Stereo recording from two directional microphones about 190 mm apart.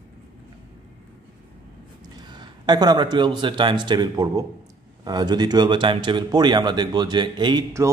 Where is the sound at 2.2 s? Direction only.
25° right (ahead or behind).